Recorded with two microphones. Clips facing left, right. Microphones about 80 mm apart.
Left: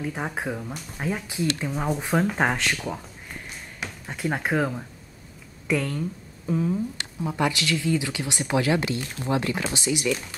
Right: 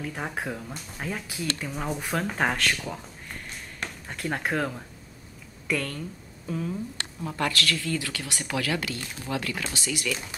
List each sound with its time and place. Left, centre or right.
0.0 s speech: centre